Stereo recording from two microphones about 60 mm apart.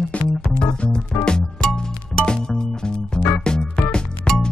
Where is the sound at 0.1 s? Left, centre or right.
Left.